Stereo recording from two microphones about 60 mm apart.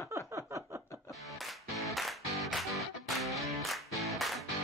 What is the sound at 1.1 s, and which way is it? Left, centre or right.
Music, centre.